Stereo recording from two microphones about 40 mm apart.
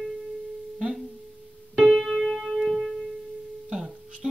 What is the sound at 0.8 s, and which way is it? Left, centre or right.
Speech, centre.